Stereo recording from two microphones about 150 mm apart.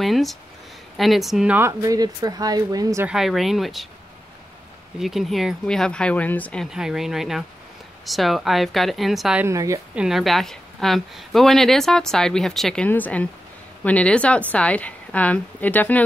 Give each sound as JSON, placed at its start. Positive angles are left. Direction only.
{"t": 0.0, "sound": "a sound", "side_deg": 0}
{"t": 0.9, "sound": "speech", "side_deg": 0}
{"t": 1.6, "sound": "speech", "side_deg": -20}
{"t": 3.1, "sound": "speech", "side_deg": 0}
{"t": 4.9, "sound": "speech", "side_deg": 0}
{"t": 6.7, "sound": "speech", "side_deg": -5}
{"t": 9.4, "sound": "speech", "side_deg": -20}
{"t": 9.9, "sound": "a woman's voice", "side_deg": 0}